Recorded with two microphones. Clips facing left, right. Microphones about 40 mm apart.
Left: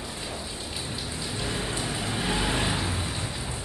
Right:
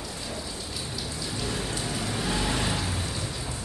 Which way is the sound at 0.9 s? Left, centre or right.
Left.